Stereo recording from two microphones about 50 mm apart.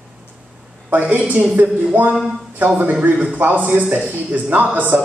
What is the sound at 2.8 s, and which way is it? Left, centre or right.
A man's voice, right.